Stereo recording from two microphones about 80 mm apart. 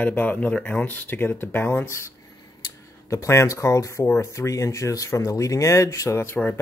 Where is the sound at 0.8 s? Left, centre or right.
Left.